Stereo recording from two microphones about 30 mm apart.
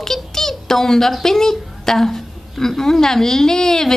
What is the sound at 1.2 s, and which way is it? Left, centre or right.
A woman's voice, centre.